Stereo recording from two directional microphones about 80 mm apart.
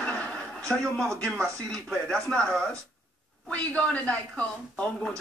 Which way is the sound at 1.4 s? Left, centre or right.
Centre.